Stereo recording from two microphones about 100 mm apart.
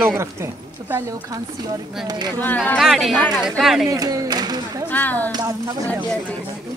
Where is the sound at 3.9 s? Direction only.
35° right (ahead or behind).